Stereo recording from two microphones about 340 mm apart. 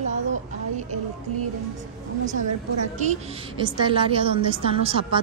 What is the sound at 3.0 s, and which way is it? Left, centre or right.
A woman's voice, centre.